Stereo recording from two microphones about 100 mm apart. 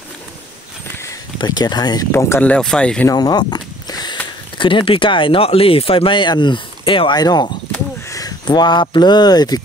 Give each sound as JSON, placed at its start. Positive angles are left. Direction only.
{"t": 1.4, "sound": "speech", "side_deg": 45}
{"t": 2.1, "sound": "speech", "side_deg": 25}
{"t": 2.4, "sound": "speech", "side_deg": 10}
{"t": 3.1, "sound": "a sound", "side_deg": 40}
{"t": 4.6, "sound": "speech", "side_deg": 55}
{"t": 7.2, "sound": "speech", "side_deg": 45}